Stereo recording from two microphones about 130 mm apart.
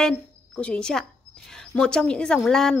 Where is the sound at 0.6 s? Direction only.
5° left (ahead or behind).